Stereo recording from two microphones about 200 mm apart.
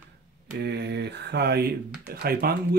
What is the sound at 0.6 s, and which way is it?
Mantra, 55° right (ahead or behind).